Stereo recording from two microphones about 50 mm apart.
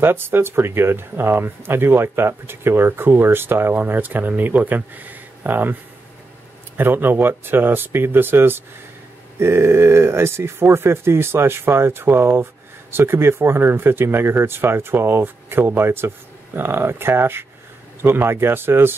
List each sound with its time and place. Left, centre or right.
0.0 s speech: right
6.8 s speech: right